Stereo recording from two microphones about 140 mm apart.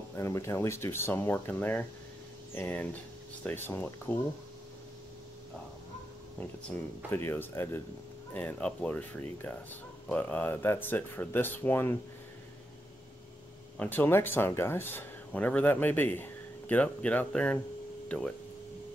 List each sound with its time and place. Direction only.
0.1 s speech: 20° left (ahead or behind)
7.1 s speech: 15° left (ahead or behind)
13.7 s speech: 15° left (ahead or behind)